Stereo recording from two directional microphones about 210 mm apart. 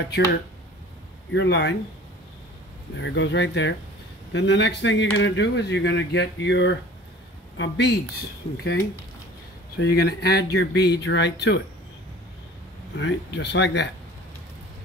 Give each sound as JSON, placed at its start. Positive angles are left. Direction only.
{"t": 0.1, "sound": "speech", "side_deg": 50}
{"t": 1.3, "sound": "speech", "side_deg": 55}
{"t": 3.0, "sound": "speech", "side_deg": 60}
{"t": 9.8, "sound": "speech", "side_deg": 50}
{"t": 12.9, "sound": "speech", "side_deg": 55}